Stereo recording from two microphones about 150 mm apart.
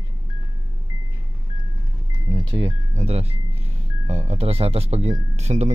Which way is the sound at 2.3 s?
35° right (ahead or behind).